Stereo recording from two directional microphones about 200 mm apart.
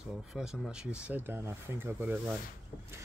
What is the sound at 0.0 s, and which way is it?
Speech, 5° right (ahead or behind).